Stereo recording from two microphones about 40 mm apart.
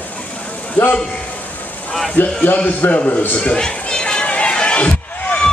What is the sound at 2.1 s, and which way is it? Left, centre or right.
A man's voice, left.